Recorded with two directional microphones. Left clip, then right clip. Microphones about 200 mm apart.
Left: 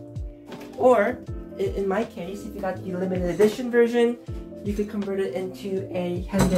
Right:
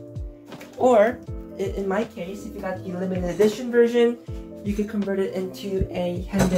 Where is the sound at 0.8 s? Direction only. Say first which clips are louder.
Left 1 dB; 10° right (ahead or behind).